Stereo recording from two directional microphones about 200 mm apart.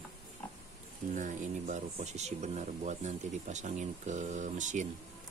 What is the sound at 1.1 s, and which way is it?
Speech, 40° right (ahead or behind).